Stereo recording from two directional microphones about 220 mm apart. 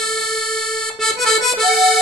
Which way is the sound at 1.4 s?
Centre (ahead or behind).